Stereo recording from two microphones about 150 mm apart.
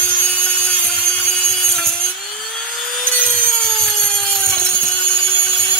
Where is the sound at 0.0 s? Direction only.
5° left (ahead or behind).